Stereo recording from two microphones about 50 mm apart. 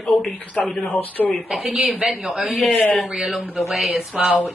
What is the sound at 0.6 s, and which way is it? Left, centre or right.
Speech, left.